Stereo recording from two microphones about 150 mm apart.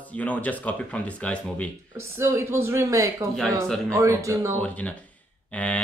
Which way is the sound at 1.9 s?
15° right (ahead or behind).